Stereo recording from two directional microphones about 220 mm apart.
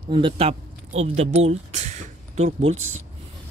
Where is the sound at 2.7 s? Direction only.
70° right (ahead or behind).